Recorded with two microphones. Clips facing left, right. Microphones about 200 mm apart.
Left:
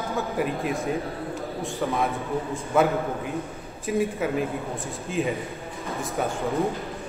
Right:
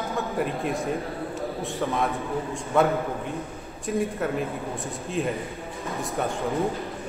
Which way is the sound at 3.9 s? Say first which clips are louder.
Left 1 dB; centre (ahead or behind).